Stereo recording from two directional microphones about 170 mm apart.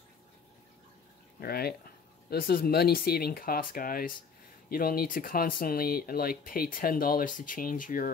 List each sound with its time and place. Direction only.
1.4 s speech: 65° left (ahead or behind)